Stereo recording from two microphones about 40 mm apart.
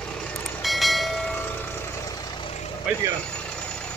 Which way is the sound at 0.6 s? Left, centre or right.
Centre.